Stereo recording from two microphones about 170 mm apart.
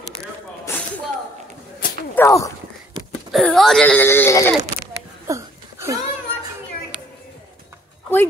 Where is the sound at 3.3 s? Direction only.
Centre (ahead or behind).